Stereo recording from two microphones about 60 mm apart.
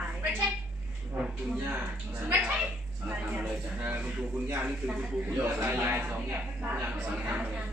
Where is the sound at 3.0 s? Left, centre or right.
Right.